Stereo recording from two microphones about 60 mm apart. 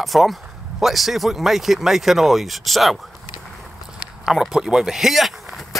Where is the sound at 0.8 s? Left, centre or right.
Centre.